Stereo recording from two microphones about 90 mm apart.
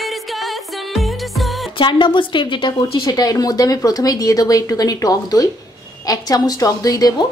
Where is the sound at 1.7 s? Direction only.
65° left (ahead or behind).